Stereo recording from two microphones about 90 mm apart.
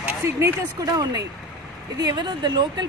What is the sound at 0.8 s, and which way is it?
A woman's voice, 45° right (ahead or behind).